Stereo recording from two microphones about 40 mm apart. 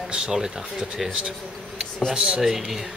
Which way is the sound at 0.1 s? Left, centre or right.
Centre.